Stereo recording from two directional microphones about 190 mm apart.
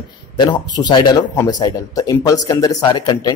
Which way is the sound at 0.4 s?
20° left (ahead or behind).